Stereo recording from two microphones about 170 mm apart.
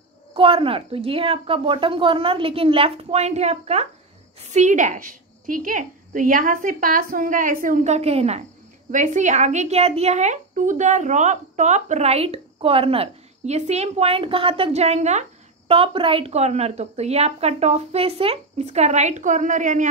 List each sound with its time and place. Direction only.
0.3 s a woman's voice: 30° right (ahead or behind); by 19.9 s 50° right (ahead or behind)